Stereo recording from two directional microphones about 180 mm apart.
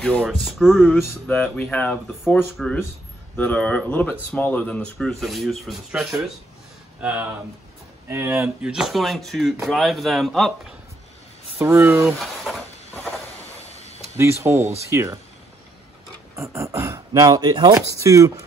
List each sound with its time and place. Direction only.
0.0 s speech: 5° left (ahead or behind); by 8.7 s 15° right (ahead or behind)
8.7 s speech: centre (ahead or behind)
11.6 s speech: 15° right (ahead or behind)
12.2 s a sound: centre (ahead or behind)
13.7 s a sound: 35° left (ahead or behind)
14.1 s speech: 15° right (ahead or behind)
16.3 s speech: 15° right (ahead or behind)